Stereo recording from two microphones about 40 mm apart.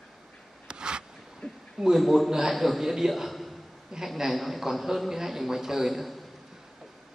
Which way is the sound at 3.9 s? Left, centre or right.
Centre.